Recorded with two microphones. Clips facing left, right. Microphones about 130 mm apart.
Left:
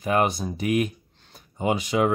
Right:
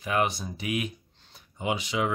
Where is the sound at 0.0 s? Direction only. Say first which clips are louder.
Left 5 dB; 45° left (ahead or behind).